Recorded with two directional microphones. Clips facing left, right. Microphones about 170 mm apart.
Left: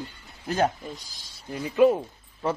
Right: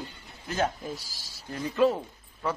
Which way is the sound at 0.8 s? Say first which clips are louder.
Right 2 dB; 5° right (ahead or behind).